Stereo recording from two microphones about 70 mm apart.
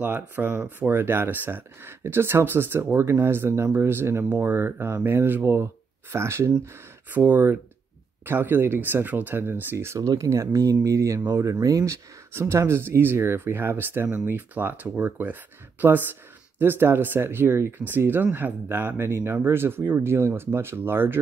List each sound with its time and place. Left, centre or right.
0.0 s speech: right
3.0 s speech: right
7.1 s speech: right
9.9 s speech: right